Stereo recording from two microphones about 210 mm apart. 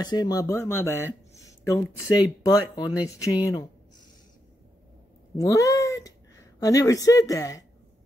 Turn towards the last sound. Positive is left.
turn(degrees=15)  # may be behind; listen again after turning